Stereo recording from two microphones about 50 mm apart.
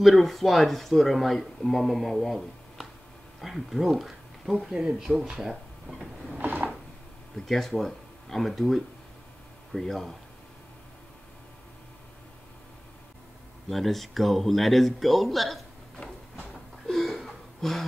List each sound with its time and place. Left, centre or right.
0.0 s speech: centre
5.4 s a sound: centre
6.4 s wood: right
7.3 s speech: centre
13.7 s speech: centre
16.8 s a sound: centre